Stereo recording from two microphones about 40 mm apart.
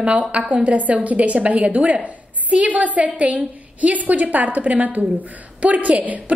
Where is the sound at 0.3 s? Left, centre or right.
Right.